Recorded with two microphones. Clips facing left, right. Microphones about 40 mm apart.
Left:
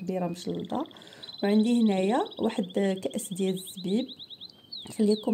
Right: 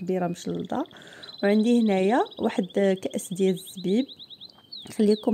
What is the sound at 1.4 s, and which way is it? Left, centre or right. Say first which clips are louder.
Speech: right 4 dB; centre.